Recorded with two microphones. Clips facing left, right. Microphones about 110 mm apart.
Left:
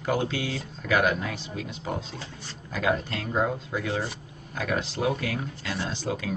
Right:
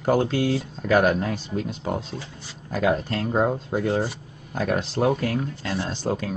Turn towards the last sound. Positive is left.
turn(degrees=-40)  # may be behind; listen again after turning